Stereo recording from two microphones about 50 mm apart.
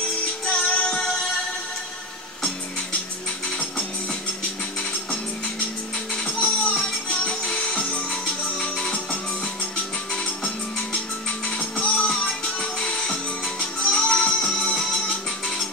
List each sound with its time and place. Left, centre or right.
0.5 s music: left
0.8 s music: centre
6.2 s music: left